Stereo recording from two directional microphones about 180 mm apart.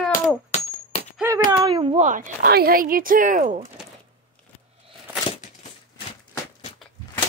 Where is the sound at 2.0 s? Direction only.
45° right (ahead or behind).